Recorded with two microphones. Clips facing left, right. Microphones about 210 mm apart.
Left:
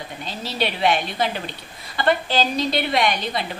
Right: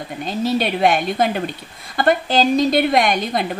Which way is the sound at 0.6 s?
50° right (ahead or behind).